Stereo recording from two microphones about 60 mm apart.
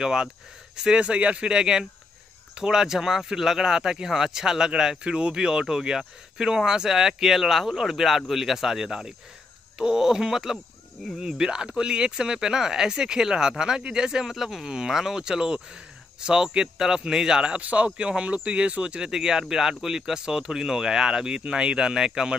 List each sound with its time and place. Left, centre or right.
0.0 s speech: centre